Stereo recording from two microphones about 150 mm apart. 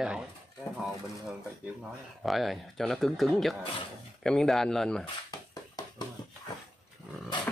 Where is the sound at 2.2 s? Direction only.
Centre (ahead or behind).